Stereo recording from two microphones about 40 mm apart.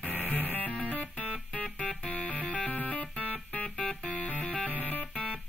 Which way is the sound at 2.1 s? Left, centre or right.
Left.